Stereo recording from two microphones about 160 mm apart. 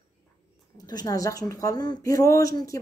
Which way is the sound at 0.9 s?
25° left (ahead or behind).